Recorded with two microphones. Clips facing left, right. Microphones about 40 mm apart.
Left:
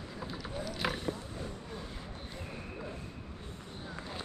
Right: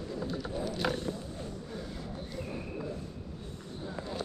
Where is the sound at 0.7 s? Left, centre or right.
Centre.